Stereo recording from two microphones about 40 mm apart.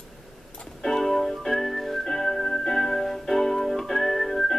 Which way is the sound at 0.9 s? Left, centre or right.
Centre.